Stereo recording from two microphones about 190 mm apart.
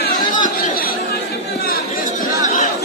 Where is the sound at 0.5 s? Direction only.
50° left (ahead or behind).